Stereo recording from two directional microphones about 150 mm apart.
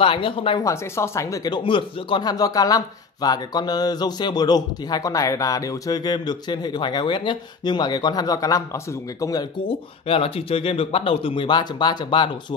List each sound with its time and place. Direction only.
0.0 s speech: 35° left (ahead or behind)
0.7 s speech: 20° left (ahead or behind)
9.7 s speech: 40° left (ahead or behind)